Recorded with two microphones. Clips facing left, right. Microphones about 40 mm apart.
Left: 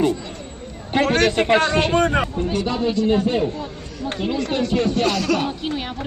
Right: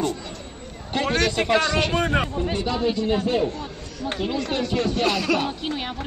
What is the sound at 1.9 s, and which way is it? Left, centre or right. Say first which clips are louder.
Speech: left 4 dB; centre.